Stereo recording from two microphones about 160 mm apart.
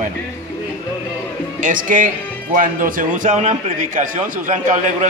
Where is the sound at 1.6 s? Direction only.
55° right (ahead or behind).